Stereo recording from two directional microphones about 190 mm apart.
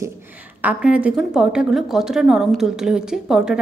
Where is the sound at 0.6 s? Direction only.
5° right (ahead or behind).